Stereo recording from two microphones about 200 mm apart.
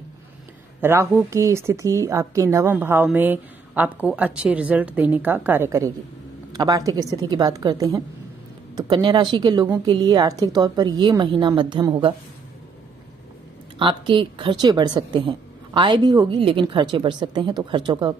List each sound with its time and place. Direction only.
0.7 s a woman's voice: 10° right (ahead or behind)
13.7 s a woman's voice: 25° right (ahead or behind)